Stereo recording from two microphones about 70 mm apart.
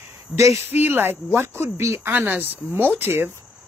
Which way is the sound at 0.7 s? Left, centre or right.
Right.